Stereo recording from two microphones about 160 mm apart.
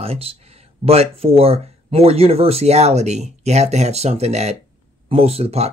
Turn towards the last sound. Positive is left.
turn(degrees=-40)  # may be behind; listen again after turning